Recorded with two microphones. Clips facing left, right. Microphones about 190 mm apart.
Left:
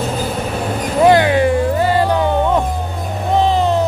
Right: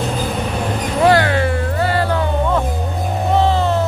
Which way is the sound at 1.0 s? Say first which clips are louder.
Left 3 dB; 15° left (ahead or behind).